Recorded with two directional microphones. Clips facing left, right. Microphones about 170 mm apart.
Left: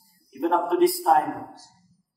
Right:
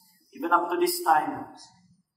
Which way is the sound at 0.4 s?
25° left (ahead or behind).